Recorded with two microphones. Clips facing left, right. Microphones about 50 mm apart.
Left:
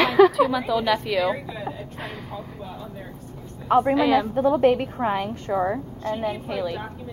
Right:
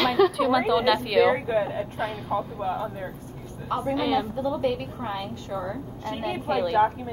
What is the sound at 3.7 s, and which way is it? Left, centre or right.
Speech, left.